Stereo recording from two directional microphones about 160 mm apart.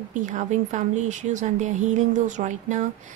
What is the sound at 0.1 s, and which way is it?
A woman's voice, 50° right (ahead or behind).